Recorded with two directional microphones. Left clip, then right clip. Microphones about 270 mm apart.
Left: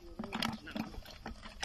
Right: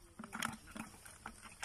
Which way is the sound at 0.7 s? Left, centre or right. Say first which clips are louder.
Left 7 dB; left.